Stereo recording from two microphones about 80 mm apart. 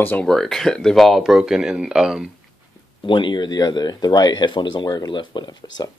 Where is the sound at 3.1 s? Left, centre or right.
Left.